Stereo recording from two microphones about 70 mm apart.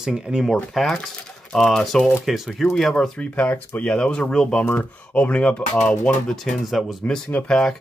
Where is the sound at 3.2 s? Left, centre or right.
Left.